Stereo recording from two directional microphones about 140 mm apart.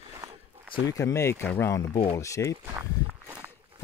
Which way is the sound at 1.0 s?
20° left (ahead or behind).